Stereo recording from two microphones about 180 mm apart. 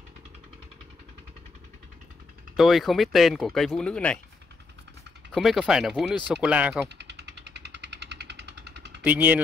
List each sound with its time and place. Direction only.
2.5 s speech: centre (ahead or behind)
5.3 s speech: centre (ahead or behind)
7.0 s a sound: 70° right (ahead or behind)
9.0 s speech: 10° right (ahead or behind)